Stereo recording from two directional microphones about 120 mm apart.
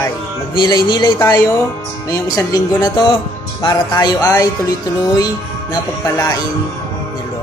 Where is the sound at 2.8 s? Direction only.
40° left (ahead or behind).